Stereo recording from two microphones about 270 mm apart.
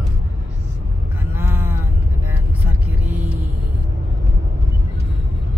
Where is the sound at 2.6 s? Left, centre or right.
Centre.